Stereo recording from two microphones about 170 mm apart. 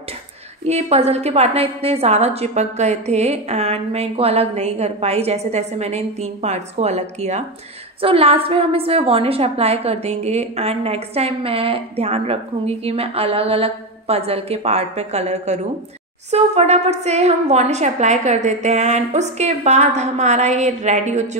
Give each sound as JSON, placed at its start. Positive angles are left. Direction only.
{"t": 0.7, "sound": "a woman's voice", "side_deg": -40}